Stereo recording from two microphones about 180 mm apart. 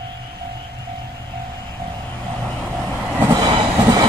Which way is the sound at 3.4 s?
25° right (ahead or behind).